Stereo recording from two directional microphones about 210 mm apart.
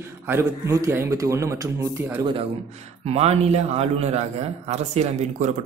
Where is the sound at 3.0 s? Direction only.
30° right (ahead or behind).